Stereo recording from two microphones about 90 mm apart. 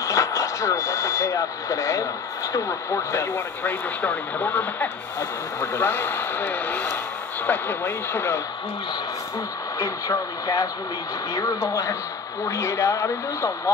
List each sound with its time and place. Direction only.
0.0 s speech: 35° left (ahead or behind)
3.6 s speech: 20° left (ahead or behind)
9.8 s speech: 40° left (ahead or behind)